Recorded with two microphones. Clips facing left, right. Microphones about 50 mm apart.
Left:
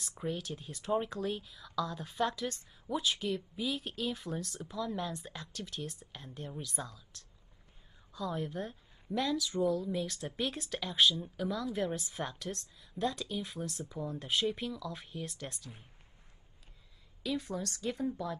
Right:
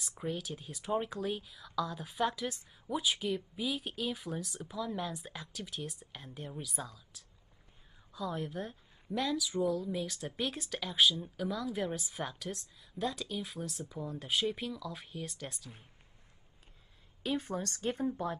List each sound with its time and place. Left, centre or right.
0.2 s a woman's voice: centre
17.2 s a woman's voice: right